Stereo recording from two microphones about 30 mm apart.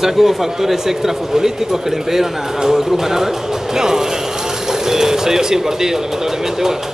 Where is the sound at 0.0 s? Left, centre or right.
Centre.